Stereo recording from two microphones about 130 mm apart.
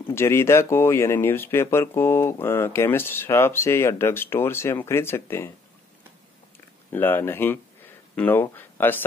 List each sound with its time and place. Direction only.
0.0 s speech: 20° left (ahead or behind)
6.9 s speech: 15° left (ahead or behind)